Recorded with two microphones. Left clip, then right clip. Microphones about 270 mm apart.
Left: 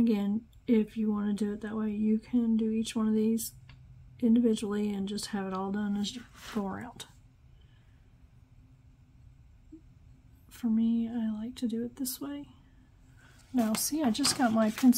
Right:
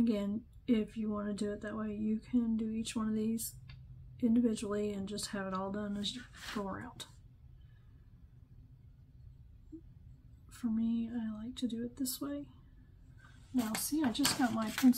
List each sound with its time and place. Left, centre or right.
0.0 s speech: left
10.6 s speech: left
13.8 s speech: left